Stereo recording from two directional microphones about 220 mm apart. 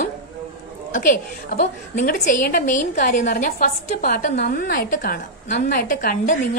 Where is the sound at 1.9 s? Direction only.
40° left (ahead or behind).